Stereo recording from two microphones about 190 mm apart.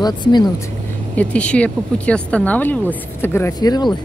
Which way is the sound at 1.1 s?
5° left (ahead or behind).